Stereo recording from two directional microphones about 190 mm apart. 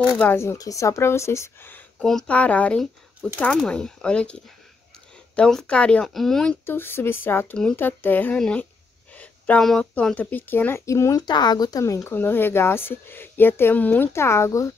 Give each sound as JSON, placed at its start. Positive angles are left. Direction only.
{"t": 0.2, "sound": "speech", "side_deg": 10}